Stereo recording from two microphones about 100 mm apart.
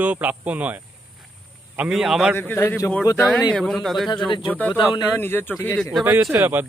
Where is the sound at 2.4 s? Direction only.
20° left (ahead or behind).